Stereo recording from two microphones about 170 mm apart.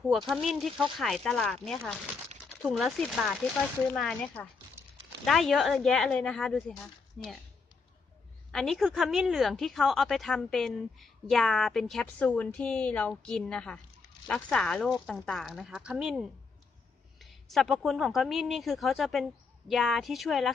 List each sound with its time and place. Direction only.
0.3 s a woman's voice: centre (ahead or behind)
4.8 s a sound: 15° right (ahead or behind)
5.2 s a woman's voice: centre (ahead or behind)
8.5 s a woman's voice: centre (ahead or behind)